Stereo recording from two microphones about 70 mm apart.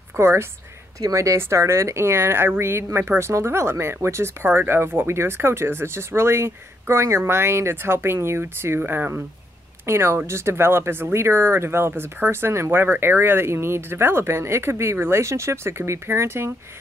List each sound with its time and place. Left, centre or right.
0.1 s a woman's voice: right
1.0 s speech: right